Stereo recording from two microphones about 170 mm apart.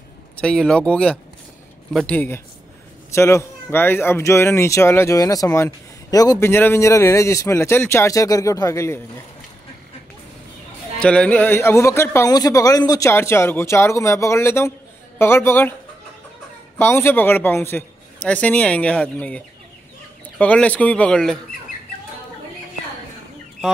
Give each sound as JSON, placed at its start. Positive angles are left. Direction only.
{"t": 0.4, "sound": "speech", "side_deg": 5}
{"t": 2.1, "sound": "speech", "side_deg": 10}
{"t": 11.0, "sound": "speech", "side_deg": 5}
{"t": 16.7, "sound": "speech", "side_deg": 15}